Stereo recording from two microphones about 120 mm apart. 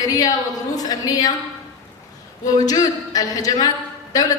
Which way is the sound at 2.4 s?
30° left (ahead or behind).